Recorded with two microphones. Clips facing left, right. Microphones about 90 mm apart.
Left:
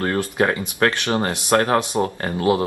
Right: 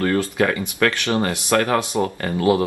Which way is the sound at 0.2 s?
20° left (ahead or behind).